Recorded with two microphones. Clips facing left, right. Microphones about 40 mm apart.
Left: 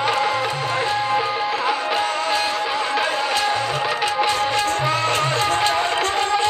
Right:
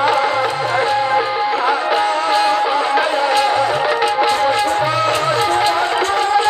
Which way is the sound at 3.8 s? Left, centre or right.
Centre.